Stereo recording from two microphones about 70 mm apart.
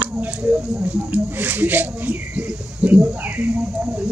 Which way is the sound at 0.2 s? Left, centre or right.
Right.